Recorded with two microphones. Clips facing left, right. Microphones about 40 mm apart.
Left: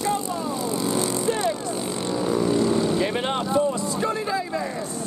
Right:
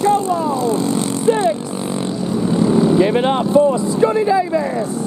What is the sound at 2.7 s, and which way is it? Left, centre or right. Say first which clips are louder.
Vehicle: right 9 dB; centre.